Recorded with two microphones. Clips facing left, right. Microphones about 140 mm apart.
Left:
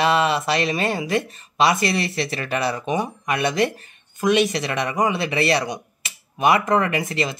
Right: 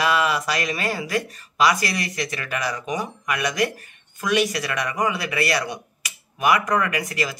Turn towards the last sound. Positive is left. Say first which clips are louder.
# left 2 dB
turn(degrees=25)  # may be behind; listen again after turning